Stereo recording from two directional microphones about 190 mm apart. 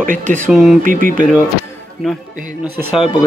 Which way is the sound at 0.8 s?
45° right (ahead or behind).